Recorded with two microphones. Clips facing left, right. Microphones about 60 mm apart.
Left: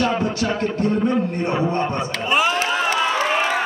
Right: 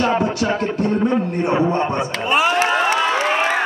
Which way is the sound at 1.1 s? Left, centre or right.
Centre.